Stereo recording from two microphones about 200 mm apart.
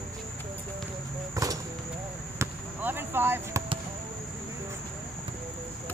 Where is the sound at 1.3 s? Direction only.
15° right (ahead or behind).